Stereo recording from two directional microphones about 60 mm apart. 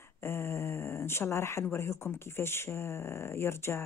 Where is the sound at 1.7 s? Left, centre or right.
Left.